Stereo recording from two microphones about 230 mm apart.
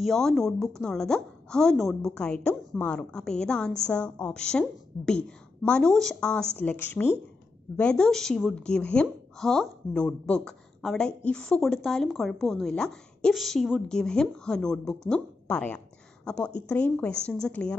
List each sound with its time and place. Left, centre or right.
0.0 s a woman's voice: centre